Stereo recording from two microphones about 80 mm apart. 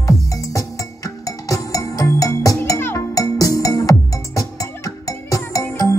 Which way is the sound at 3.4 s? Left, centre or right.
Left.